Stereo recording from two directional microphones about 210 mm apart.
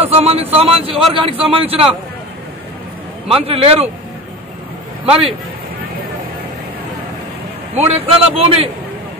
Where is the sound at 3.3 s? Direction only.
30° right (ahead or behind).